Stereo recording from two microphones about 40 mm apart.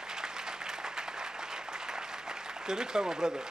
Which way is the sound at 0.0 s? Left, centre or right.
Centre.